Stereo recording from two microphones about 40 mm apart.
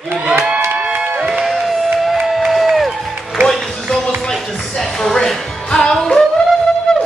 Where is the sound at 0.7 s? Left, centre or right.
Right.